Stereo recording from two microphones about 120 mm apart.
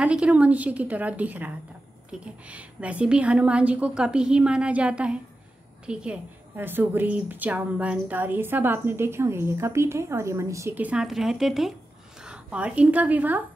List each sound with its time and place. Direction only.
0.0 s a woman's voice: 10° right (ahead or behind)
10.8 s a woman's voice: 5° right (ahead or behind)